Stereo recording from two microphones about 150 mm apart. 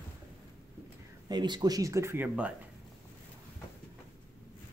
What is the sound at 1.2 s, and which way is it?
Speech, 30° right (ahead or behind).